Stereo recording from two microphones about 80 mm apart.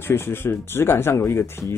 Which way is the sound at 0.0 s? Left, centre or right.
Left.